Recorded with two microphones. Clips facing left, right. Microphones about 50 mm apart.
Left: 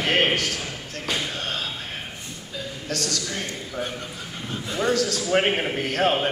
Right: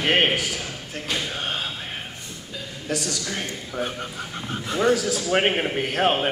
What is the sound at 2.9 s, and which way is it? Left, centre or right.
A man's voice, centre.